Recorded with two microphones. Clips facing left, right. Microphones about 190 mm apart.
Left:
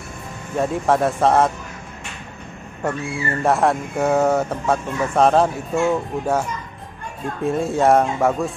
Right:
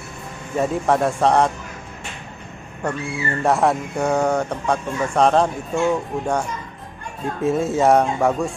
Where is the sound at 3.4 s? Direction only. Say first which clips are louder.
Even; centre (ahead or behind).